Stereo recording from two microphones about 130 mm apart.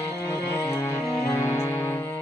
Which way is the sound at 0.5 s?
25° left (ahead or behind).